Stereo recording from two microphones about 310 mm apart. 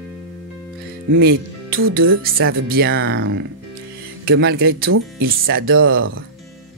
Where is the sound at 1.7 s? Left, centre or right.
Right.